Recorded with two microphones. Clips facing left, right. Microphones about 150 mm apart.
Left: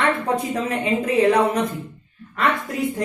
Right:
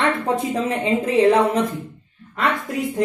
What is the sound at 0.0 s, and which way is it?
A woman's voice, 25° right (ahead or behind).